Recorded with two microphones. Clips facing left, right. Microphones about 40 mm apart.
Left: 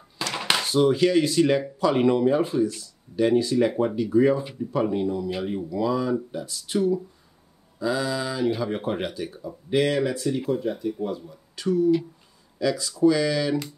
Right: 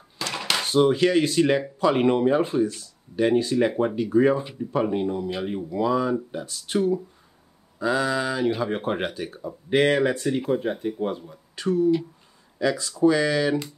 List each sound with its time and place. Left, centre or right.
0.3 s a sound: centre
0.7 s speech: right
6.3 s speech: right